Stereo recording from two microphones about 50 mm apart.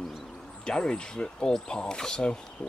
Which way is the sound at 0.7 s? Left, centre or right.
Centre.